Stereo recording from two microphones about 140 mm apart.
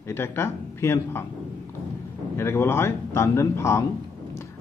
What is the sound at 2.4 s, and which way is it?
A man's voice, 15° left (ahead or behind).